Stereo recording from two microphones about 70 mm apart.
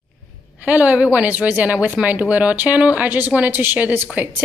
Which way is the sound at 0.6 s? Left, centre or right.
Right.